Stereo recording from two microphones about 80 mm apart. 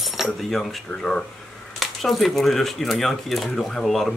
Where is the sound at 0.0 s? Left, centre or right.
Centre.